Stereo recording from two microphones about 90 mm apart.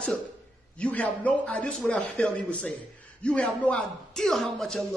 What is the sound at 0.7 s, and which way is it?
A man's voice, 15° left (ahead or behind).